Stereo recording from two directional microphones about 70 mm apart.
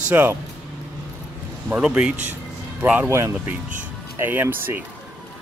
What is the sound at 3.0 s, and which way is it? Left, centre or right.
Speech, right.